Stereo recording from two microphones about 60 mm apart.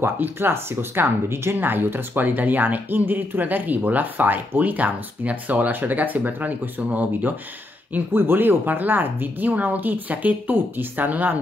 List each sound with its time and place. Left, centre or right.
0.0 s speech: right
7.9 s speech: right